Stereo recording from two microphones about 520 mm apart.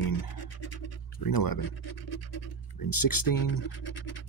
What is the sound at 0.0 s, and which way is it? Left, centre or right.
Scratch, left.